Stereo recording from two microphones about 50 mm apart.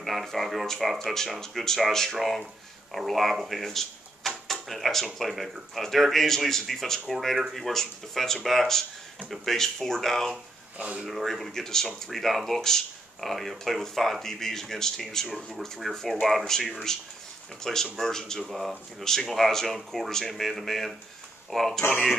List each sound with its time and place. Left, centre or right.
0.0 s speech: centre
3.3 s drawer open or close: centre
5.2 s speech: centre
10.8 s speech: right
11.1 s speech: centre
15.2 s speech: centre
15.9 s speech: centre
18.4 s speech: centre